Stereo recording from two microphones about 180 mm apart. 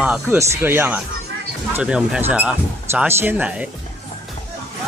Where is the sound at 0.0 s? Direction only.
10° right (ahead or behind).